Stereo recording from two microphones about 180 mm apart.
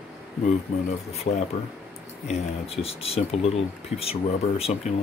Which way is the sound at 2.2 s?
35° left (ahead or behind).